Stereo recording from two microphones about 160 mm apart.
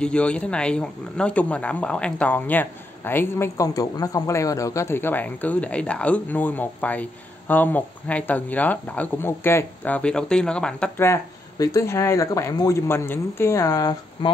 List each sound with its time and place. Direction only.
0.0 s speech: 5° left (ahead or behind)
11.1 s speech: 20° left (ahead or behind)